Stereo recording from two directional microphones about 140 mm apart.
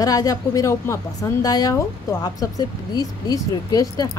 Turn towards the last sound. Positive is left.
turn(degrees=25)  # may be behind; listen again after turning